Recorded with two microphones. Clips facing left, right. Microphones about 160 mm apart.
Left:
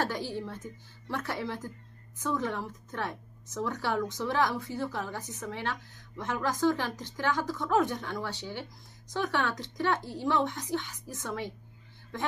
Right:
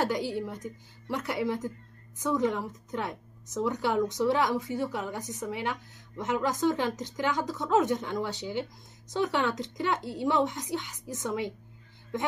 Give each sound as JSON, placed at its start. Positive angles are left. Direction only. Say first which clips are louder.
{"t": 0.0, "sound": "a woman's voice", "louder": "right 3 dB", "side_deg": -15}